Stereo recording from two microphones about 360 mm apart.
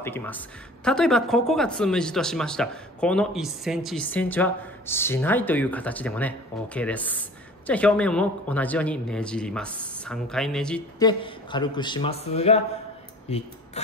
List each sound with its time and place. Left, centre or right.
0.0 s speech: centre